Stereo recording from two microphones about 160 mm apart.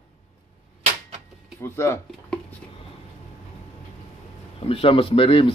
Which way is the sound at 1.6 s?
15° left (ahead or behind).